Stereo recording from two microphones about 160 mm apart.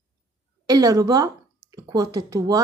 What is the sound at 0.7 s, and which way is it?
Speech, 25° right (ahead or behind).